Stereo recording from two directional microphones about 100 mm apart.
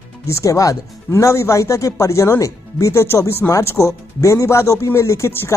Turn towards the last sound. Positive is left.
turn(degrees=25)  # may be behind; listen again after turning